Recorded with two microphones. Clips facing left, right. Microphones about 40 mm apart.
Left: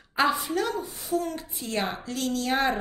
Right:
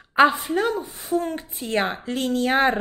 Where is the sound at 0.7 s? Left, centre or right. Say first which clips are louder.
Right 4 dB; right.